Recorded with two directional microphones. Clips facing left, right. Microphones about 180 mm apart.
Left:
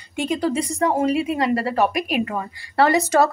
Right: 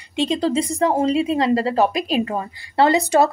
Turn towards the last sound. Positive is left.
turn(degrees=-15)  # may be behind; listen again after turning